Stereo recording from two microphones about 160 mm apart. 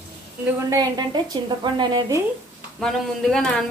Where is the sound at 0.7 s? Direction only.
25° right (ahead or behind).